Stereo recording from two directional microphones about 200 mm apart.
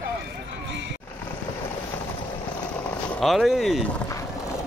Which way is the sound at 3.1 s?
Centre (ahead or behind).